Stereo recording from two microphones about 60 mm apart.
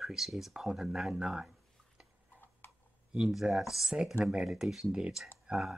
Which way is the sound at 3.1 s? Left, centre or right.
Centre.